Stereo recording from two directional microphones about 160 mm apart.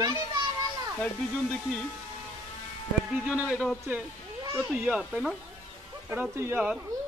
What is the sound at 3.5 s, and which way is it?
Speech, 5° right (ahead or behind).